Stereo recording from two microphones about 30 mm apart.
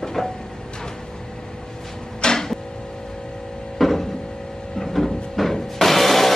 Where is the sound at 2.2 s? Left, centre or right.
Centre.